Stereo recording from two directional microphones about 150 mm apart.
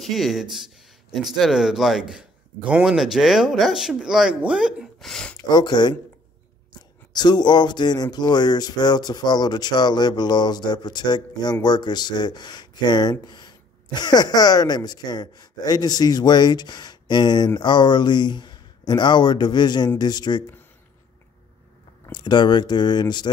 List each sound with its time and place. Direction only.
0.0 s a man's voice: centre (ahead or behind)
5.5 s speech: 30° left (ahead or behind)
7.1 s speech: 30° left (ahead or behind)
22.1 s speech: 30° left (ahead or behind)